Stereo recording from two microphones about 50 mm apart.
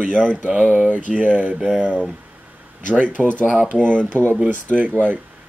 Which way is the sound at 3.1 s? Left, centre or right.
Left.